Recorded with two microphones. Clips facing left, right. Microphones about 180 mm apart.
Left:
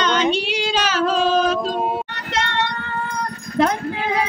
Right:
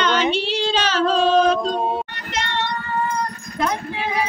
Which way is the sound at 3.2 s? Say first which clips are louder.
Left 4 dB; 60° left (ahead or behind).